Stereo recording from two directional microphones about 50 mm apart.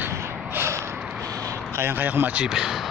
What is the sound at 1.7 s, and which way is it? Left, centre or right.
Speech, right.